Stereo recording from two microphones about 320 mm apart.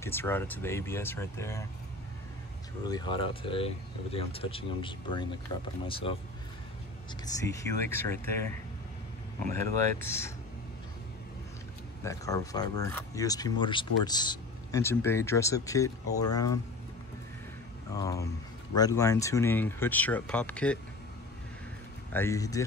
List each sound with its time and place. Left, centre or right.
0.0 s speech: centre
2.9 s speech: centre
7.6 s speech: centre
9.4 s speech: centre
12.0 s speech: centre
17.9 s speech: centre
22.1 s speech: centre